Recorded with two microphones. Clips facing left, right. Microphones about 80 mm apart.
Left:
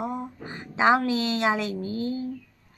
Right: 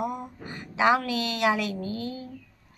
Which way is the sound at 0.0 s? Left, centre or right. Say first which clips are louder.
Even; left.